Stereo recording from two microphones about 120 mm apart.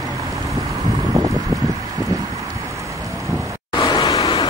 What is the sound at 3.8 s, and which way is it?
Vehicle, 35° left (ahead or behind).